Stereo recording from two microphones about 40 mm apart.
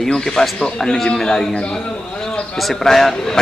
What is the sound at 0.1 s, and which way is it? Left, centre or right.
A man's voice, centre.